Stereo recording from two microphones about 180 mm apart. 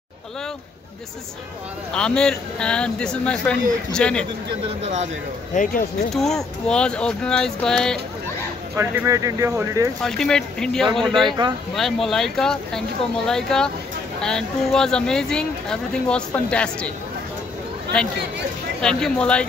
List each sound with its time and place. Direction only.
1.9 s speech: 5° left (ahead or behind)
5.5 s speech: 45° left (ahead or behind)
6.1 s speech: centre (ahead or behind)
8.7 s speech: 15° right (ahead or behind)
10.0 s speech: 5° left (ahead or behind)
11.2 s speech: 25° right (ahead or behind)
11.7 s speech: centre (ahead or behind)
17.9 s speech: 5° left (ahead or behind)